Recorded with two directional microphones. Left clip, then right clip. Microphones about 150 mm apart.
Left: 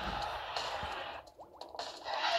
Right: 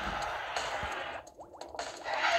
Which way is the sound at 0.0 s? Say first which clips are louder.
Right 3 dB; 45° right (ahead or behind).